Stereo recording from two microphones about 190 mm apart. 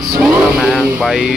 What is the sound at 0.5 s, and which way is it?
Speech, centre (ahead or behind).